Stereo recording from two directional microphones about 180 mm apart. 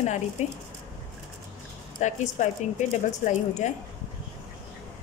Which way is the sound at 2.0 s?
40° left (ahead or behind).